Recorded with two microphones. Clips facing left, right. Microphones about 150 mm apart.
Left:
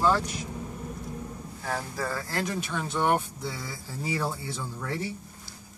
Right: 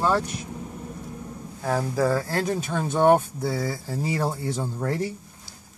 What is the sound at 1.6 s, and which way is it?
Speech, 35° right (ahead or behind).